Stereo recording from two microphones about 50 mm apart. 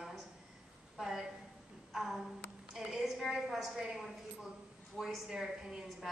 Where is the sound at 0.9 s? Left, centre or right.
Centre.